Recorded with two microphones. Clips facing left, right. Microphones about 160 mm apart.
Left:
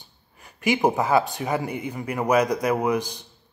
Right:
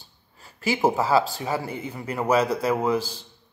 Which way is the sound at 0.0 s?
15° left (ahead or behind).